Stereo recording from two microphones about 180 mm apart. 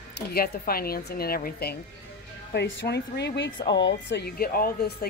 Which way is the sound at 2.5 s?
70° left (ahead or behind).